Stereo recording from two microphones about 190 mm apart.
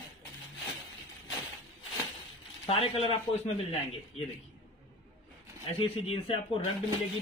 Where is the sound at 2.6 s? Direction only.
30° left (ahead or behind).